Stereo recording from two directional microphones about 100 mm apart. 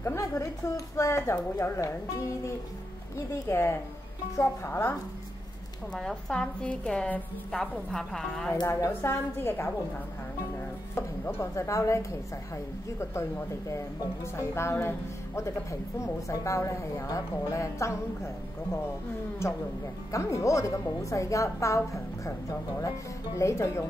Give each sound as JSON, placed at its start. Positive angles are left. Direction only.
{"t": 0.0, "sound": "a woman's voice", "side_deg": 30}
{"t": 3.4, "sound": "a woman's voice", "side_deg": 25}
{"t": 5.9, "sound": "a woman's voice", "side_deg": 5}
{"t": 8.6, "sound": "a woman's voice", "side_deg": 25}
{"t": 11.0, "sound": "a woman's voice", "side_deg": 25}